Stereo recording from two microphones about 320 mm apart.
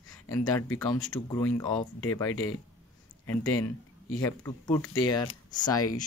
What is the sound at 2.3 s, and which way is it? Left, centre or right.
Speech, left.